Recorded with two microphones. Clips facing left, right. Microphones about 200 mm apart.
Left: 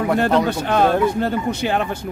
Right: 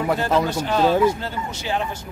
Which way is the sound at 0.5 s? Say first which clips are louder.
Left 2 dB; 60° left (ahead or behind).